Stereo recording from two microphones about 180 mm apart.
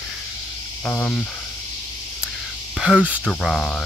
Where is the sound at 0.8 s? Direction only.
5° left (ahead or behind).